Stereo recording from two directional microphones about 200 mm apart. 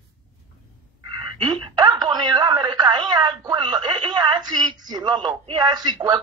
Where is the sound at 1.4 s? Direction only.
20° right (ahead or behind).